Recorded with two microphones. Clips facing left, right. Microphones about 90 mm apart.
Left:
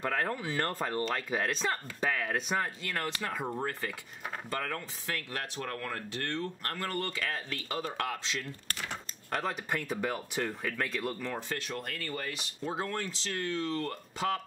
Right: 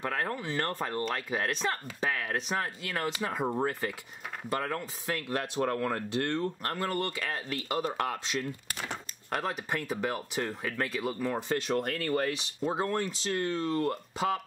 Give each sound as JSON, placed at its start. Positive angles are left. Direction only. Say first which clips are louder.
{"t": 0.0, "sound": "speech", "louder": "even", "side_deg": -5}
{"t": 5.7, "sound": "speech", "louder": "right 7 dB", "side_deg": -25}
{"t": 9.3, "sound": "speech", "louder": "right 1 dB", "side_deg": -5}
{"t": 11.7, "sound": "speech", "louder": "right 8 dB", "side_deg": -45}
{"t": 12.6, "sound": "speech", "louder": "right 5 dB", "side_deg": -10}